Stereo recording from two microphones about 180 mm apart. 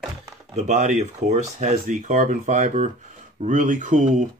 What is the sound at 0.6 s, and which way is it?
Speech, 40° right (ahead or behind).